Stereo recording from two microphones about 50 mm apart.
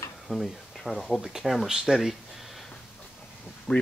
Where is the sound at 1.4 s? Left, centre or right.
Centre.